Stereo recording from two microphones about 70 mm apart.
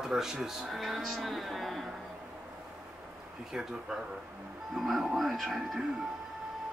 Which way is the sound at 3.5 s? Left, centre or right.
Centre.